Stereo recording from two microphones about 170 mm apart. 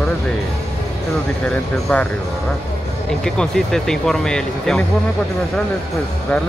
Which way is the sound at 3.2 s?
5° left (ahead or behind).